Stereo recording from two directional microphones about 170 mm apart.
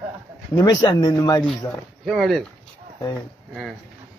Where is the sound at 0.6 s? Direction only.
25° left (ahead or behind).